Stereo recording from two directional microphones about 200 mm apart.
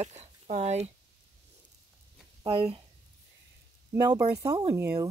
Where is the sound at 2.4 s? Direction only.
30° right (ahead or behind).